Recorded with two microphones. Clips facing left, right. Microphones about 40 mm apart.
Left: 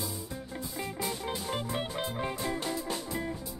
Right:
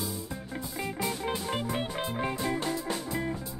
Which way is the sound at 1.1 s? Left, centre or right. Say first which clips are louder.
Right 3 dB; centre.